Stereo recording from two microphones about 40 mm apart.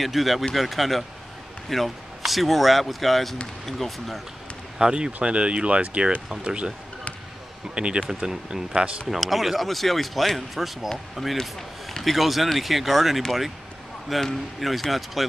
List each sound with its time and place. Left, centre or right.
0.0 s speech: centre
4.7 s speech: centre
7.7 s speech: right
9.0 s speech: centre
14.2 s speech: centre